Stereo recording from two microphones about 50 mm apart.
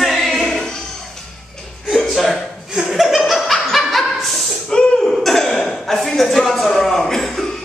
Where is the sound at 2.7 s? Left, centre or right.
Centre.